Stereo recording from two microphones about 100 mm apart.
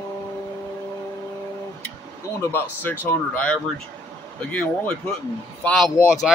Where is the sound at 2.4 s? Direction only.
20° left (ahead or behind).